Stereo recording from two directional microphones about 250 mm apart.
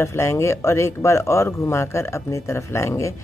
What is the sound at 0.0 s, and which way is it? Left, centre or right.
Speech, centre.